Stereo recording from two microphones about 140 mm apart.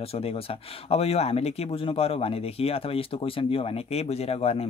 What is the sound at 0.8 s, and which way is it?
Speech, 45° left (ahead or behind).